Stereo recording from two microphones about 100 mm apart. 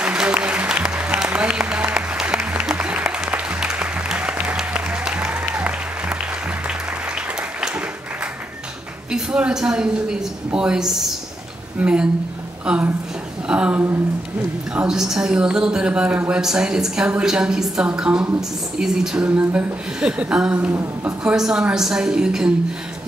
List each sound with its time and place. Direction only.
0.0 s applause: 10° right (ahead or behind)
9.1 s a woman's voice: 10° right (ahead or behind)
20.7 s a woman's voice: 25° right (ahead or behind)
21.2 s a woman's voice: 5° right (ahead or behind)